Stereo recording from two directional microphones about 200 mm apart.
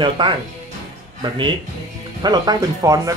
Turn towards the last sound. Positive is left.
turn(degrees=-15)  # may be behind; listen again after turning